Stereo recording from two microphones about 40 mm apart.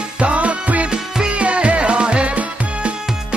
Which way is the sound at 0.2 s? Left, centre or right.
Right.